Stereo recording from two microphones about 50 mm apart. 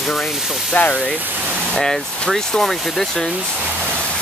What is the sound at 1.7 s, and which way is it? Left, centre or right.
Speech, centre.